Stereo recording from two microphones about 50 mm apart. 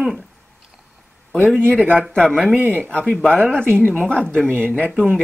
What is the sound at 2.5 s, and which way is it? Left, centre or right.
Speech, right.